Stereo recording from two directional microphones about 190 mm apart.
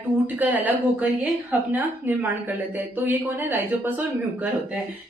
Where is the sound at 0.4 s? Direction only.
10° right (ahead or behind).